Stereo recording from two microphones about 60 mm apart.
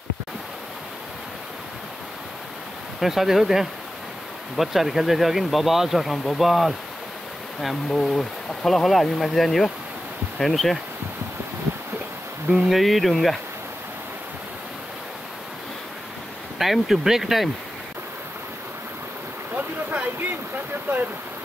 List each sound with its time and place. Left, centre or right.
3.0 s speech: centre
7.9 s speech: centre
12.4 s speech: centre
16.5 s speech: centre
19.5 s a sound: right